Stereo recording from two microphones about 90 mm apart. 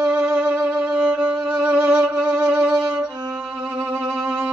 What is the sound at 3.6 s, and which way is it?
Music, 25° right (ahead or behind).